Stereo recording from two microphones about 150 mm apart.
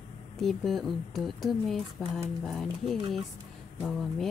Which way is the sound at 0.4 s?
Centre (ahead or behind).